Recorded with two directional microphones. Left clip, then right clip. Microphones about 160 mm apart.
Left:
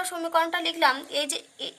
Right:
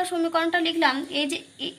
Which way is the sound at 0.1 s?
45° left (ahead or behind).